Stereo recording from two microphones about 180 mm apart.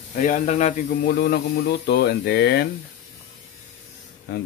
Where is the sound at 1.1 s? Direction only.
65° left (ahead or behind).